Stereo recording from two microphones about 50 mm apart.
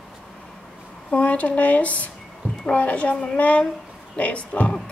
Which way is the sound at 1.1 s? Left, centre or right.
Left.